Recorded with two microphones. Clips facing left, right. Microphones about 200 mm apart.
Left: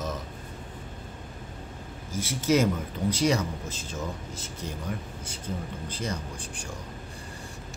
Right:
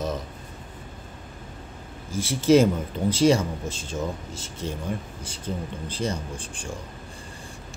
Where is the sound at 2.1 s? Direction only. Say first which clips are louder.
Right 6 dB; 30° right (ahead or behind).